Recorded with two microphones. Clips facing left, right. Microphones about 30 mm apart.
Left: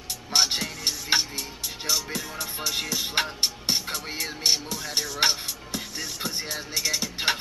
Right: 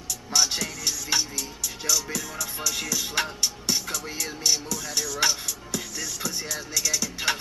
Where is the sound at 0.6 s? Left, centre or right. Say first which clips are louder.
Even; left.